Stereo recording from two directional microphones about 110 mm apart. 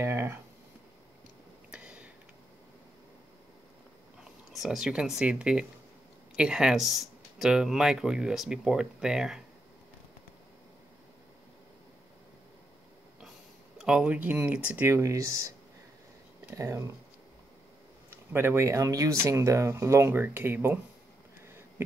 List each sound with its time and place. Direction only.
0.0 s a sound: 25° right (ahead or behind)
1.7 s a sound: 10° right (ahead or behind)
4.2 s speech: 5° right (ahead or behind)
13.7 s speech: 10° right (ahead or behind)
14.9 s speech: 25° right (ahead or behind)
16.5 s speech: 30° right (ahead or behind)
18.1 s speech: 20° right (ahead or behind)